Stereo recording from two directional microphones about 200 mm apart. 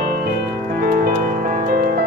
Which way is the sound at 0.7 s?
45° right (ahead or behind).